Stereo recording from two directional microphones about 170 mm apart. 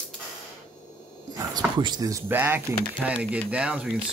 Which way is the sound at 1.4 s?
25° right (ahead or behind).